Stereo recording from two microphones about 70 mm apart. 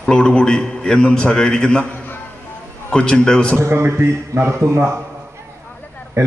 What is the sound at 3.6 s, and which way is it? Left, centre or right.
Speech, right.